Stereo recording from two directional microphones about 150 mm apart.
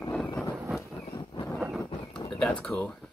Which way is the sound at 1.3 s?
30° left (ahead or behind).